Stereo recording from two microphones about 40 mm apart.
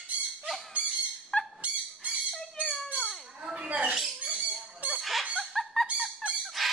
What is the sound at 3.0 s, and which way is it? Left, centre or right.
Chicken, centre.